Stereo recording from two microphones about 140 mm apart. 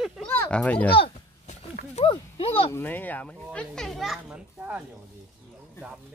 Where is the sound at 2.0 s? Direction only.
40° left (ahead or behind).